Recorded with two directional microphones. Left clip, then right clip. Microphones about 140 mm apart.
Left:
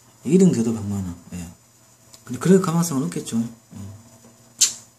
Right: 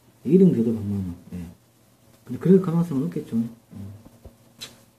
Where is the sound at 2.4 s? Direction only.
15° left (ahead or behind).